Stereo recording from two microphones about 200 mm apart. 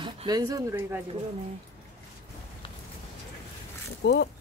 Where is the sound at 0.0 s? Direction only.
20° right (ahead or behind).